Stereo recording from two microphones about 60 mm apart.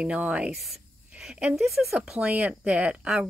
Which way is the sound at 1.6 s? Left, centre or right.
Centre.